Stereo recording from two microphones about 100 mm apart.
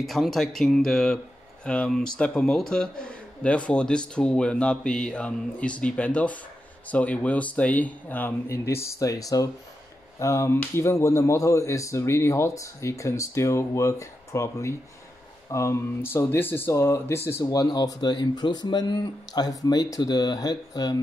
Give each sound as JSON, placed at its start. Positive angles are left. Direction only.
{"t": 0.0, "sound": "speech", "side_deg": 0}
{"t": 17.5, "sound": "speech", "side_deg": 40}